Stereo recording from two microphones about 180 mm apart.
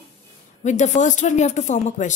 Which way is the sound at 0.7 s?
40° left (ahead or behind).